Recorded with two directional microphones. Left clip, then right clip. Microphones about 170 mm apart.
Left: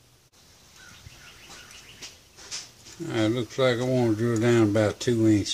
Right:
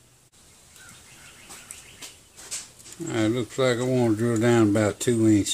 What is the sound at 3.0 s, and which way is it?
Speech, 10° right (ahead or behind).